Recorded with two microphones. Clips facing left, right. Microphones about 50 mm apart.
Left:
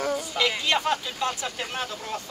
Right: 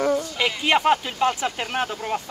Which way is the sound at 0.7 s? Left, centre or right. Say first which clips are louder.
Right 6 dB; right.